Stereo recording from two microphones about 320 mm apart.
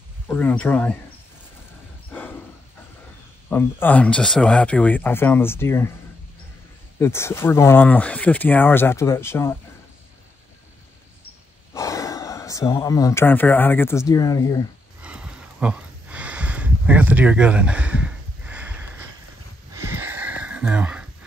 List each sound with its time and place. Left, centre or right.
0.3 s speech: centre
3.4 s speech: centre
7.0 s speech: centre
11.7 s speech: centre
15.0 s a sound: centre
19.7 s a sound: centre